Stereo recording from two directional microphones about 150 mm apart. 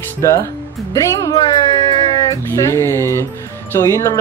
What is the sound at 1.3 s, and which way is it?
Speech, 35° left (ahead or behind).